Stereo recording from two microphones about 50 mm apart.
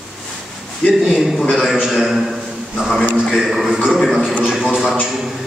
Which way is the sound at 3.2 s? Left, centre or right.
Centre.